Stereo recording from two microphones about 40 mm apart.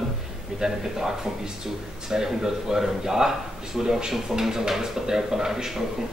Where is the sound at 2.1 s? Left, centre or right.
Centre.